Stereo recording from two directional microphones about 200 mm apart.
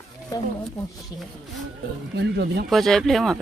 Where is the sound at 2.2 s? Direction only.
55° right (ahead or behind).